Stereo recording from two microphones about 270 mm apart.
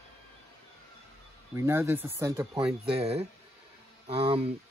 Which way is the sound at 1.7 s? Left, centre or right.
Centre.